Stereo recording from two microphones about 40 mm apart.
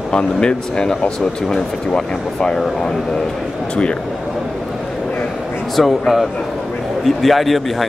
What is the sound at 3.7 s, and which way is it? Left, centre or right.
Speech, left.